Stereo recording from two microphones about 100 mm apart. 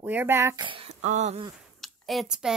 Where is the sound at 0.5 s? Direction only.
55° right (ahead or behind); by 1.4 s 80° right.